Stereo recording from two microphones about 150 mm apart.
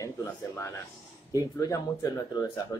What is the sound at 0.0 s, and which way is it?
Speech, 20° left (ahead or behind).